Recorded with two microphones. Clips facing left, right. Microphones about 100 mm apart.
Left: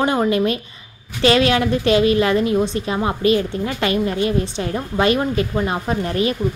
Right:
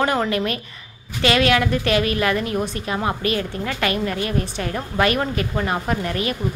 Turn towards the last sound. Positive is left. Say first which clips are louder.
# left 3 dB
turn(degrees=30)  # may be behind; listen again after turning